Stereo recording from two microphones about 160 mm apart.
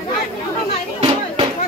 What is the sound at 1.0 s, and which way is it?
Music, 35° right (ahead or behind).